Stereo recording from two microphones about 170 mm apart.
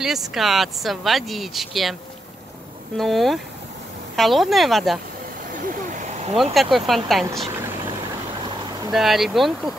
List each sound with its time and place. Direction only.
0.0 s speech: centre (ahead or behind)
3.0 s speech: centre (ahead or behind)
5.5 s vehicle: 50° right (ahead or behind)
6.3 s speech: centre (ahead or behind)
8.9 s speech: centre (ahead or behind)